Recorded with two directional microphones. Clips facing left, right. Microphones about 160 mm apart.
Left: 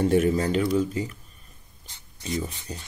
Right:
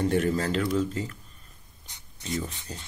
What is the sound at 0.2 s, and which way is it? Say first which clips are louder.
Speech: left 3 dB; 10° left (ahead or behind).